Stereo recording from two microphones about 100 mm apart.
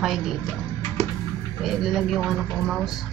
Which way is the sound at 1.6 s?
5° right (ahead or behind).